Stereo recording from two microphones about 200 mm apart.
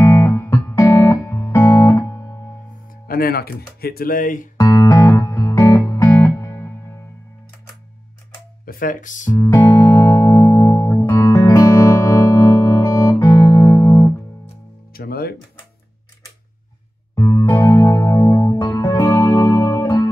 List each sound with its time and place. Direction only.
0.0 s music: 15° left (ahead or behind)
3.1 s speech: 50° left (ahead or behind)
4.6 s music: 20° left (ahead or behind)
8.6 s speech: 45° left (ahead or behind)
9.3 s music: 15° left (ahead or behind)
15.0 s music: 50° left (ahead or behind)
17.1 s music: 15° left (ahead or behind)